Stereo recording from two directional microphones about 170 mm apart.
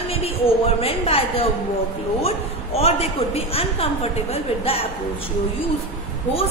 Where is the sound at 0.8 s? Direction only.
35° left (ahead or behind).